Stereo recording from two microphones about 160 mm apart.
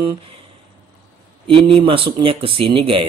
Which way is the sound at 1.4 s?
35° right (ahead or behind).